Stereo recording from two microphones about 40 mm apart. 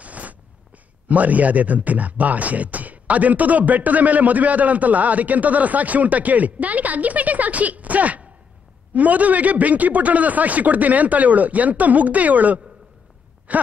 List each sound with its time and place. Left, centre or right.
0.0 s a sound: right
1.0 s speech: right
13.5 s sigh: right